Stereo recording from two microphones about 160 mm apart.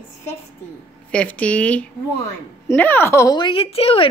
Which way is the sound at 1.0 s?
10° left (ahead or behind).